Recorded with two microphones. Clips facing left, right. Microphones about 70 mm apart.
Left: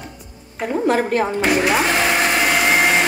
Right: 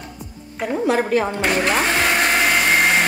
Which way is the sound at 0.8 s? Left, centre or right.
Left.